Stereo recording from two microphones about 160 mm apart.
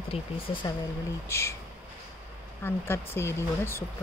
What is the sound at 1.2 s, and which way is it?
Speech, 15° left (ahead or behind).